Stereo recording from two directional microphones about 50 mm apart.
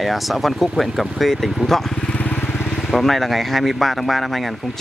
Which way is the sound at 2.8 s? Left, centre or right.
Centre.